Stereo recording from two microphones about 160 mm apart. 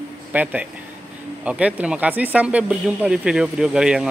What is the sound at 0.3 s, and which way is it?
Speech, 10° right (ahead or behind).